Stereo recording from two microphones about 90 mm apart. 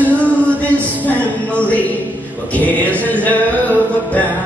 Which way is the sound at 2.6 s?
15° left (ahead or behind).